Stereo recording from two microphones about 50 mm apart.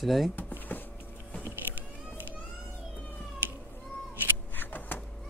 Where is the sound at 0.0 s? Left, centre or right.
Centre.